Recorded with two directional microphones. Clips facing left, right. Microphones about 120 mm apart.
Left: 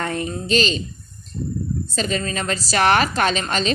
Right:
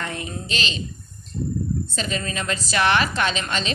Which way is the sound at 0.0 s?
40° left (ahead or behind).